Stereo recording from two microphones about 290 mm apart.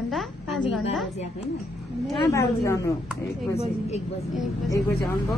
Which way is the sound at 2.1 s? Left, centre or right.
Centre.